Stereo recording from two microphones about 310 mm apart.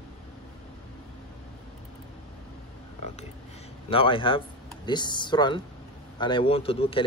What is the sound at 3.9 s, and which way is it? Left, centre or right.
A man's voice, centre.